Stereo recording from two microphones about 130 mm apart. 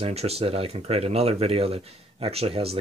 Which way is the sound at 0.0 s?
50° right (ahead or behind).